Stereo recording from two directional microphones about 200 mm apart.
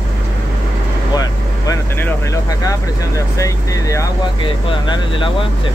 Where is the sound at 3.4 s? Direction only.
15° left (ahead or behind).